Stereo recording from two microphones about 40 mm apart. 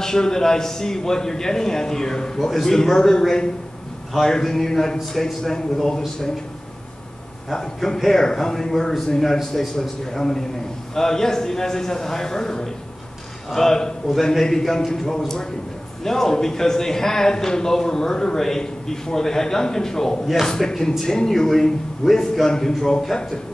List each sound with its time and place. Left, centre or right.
0.0 s a man's voice: centre
7.5 s a man's voice: centre
22.0 s a man's voice: centre
22.5 s a man's voice: centre